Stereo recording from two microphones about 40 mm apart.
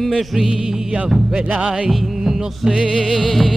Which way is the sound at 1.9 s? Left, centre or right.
Centre.